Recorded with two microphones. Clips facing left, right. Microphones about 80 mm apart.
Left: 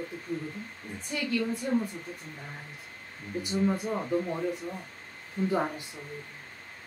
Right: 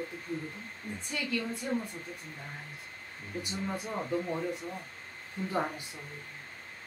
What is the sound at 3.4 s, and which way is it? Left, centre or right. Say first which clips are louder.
Speech: left 8 dB; centre.